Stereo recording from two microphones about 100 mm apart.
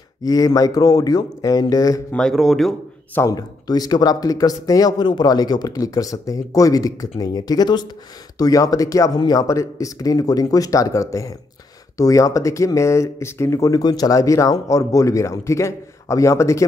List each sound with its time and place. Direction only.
0.2 s speech: 40° left (ahead or behind)
2.1 s speech: 5° left (ahead or behind)
3.2 s speech: 35° left (ahead or behind)